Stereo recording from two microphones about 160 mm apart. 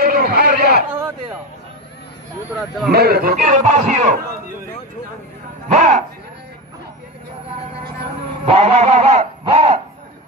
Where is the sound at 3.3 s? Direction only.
50° right (ahead or behind).